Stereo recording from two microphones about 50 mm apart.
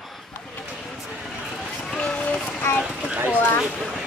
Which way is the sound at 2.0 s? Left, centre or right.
Left.